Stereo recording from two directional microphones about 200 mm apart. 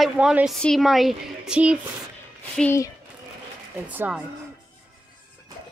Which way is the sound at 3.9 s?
10° right (ahead or behind).